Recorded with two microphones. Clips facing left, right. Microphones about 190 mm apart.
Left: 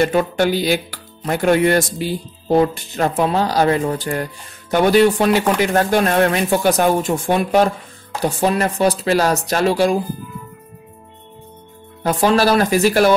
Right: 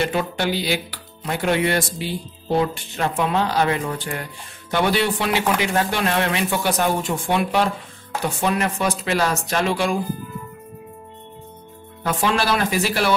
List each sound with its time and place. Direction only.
0.0 s speech: 45° left (ahead or behind)
12.0 s speech: 40° left (ahead or behind)